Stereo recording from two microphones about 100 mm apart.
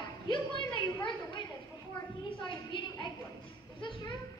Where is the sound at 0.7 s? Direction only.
55° left (ahead or behind).